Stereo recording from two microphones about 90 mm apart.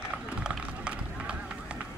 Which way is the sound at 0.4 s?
10° right (ahead or behind).